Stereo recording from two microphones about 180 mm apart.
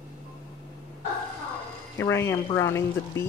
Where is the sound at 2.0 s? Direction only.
15° left (ahead or behind).